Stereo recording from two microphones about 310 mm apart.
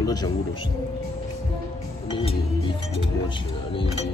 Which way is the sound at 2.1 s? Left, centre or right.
Centre.